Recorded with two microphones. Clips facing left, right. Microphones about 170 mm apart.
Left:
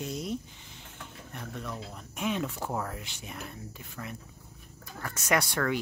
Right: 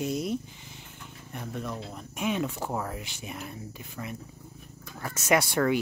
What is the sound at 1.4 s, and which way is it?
Speech, 10° right (ahead or behind).